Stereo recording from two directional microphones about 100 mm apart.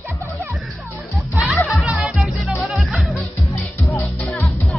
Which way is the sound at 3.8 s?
15° left (ahead or behind).